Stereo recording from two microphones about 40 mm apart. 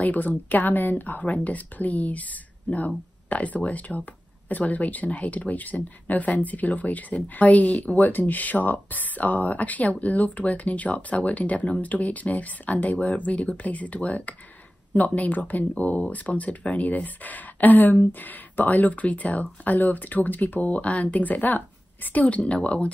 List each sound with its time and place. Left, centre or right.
0.0 s speech: left
22.4 s speech: left